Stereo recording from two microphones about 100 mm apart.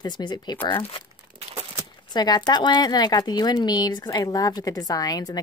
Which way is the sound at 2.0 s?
45° left (ahead or behind).